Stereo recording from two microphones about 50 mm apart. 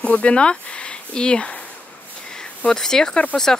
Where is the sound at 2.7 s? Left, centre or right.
Centre.